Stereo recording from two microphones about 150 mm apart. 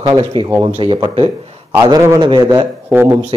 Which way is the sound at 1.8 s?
25° right (ahead or behind).